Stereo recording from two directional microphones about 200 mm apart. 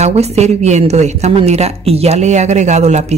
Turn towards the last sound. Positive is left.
turn(degrees=-35)  # may be behind; listen again after turning